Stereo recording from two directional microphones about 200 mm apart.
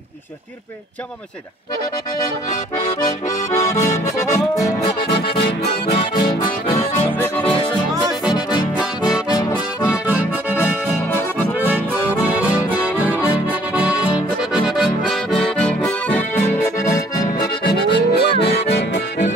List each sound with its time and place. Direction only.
3.3 s accordion: 15° left (ahead or behind)
7.2 s music: 10° left (ahead or behind)
10.0 s accordion: 10° right (ahead or behind)
12.5 s accordion: 5° right (ahead or behind); by 17.0 s 15° left (ahead or behind)
17.4 s accordion: 50° left (ahead or behind)